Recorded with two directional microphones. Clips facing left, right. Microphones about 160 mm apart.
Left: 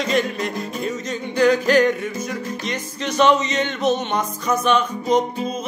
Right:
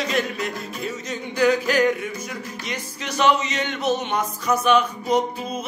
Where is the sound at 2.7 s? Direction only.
10° right (ahead or behind).